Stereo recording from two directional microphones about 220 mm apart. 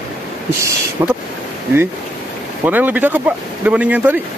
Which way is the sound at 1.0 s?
15° right (ahead or behind).